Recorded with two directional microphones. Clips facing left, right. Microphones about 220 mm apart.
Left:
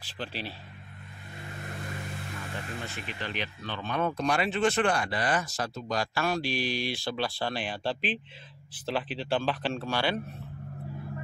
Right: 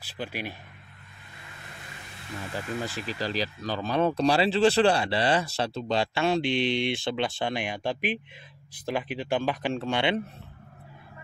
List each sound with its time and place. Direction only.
0.0 s speech: 10° right (ahead or behind)
2.5 s speech: 35° right (ahead or behind)